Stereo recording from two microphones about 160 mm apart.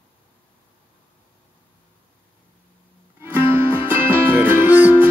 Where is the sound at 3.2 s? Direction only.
15° right (ahead or behind).